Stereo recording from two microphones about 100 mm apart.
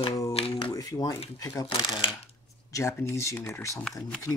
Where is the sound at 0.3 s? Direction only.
65° left (ahead or behind).